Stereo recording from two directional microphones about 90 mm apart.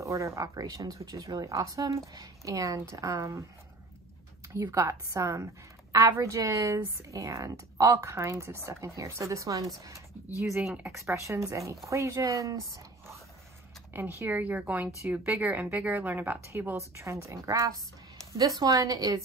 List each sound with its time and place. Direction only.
0.0 s a woman's voice: 35° right (ahead or behind)
4.6 s a woman's voice: 25° right (ahead or behind)
13.9 s speech: 25° right (ahead or behind)
15.0 s a woman's voice: 30° right (ahead or behind)
15.3 s a woman's voice: 15° right (ahead or behind); by 19.2 s 45° right (ahead or behind)